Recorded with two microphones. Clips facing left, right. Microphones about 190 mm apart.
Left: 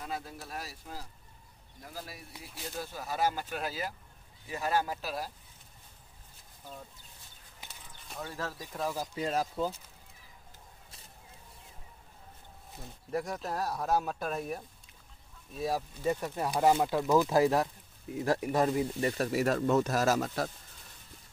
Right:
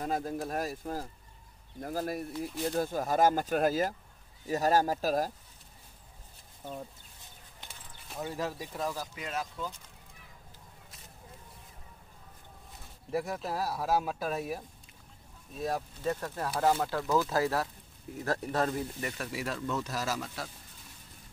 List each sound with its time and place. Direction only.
0.0 s speech: 45° right (ahead or behind)
8.2 s speech: 15° right (ahead or behind)
9.1 s speech: 35° left (ahead or behind)
13.1 s speech: 5° right (ahead or behind); by 18.9 s 15° left (ahead or behind)
18.9 s speech: 35° left (ahead or behind)